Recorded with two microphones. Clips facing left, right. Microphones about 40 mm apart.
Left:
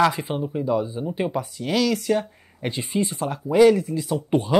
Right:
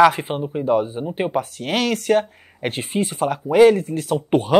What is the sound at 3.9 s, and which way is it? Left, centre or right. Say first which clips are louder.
Speech: right 3 dB; right.